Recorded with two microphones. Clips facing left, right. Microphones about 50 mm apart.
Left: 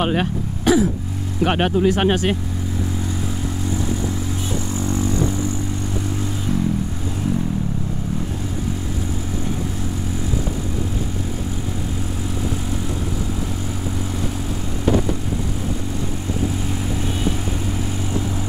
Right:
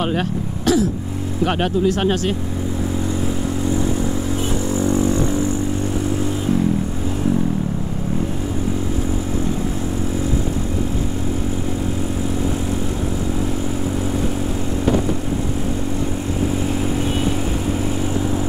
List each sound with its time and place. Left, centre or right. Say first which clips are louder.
0.0 s throat clearing: left 1 dB; left
1.4 s speech: left 1 dB; left
4.7 s a sound: right 4 dB; centre